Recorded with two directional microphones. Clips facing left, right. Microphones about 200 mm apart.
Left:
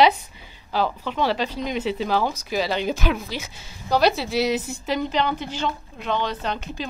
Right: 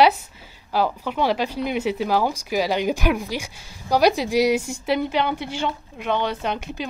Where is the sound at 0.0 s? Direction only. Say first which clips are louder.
Right 1 dB; 10° right (ahead or behind).